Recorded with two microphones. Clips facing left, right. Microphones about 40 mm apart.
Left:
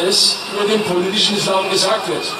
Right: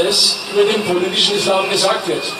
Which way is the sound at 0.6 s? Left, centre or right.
Centre.